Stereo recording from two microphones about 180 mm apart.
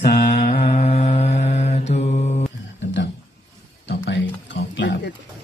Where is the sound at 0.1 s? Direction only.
45° left (ahead or behind).